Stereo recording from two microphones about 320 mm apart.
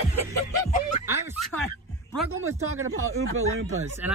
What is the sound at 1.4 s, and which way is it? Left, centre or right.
Speech, centre.